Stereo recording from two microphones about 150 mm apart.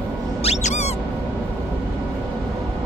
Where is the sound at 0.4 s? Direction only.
50° left (ahead or behind).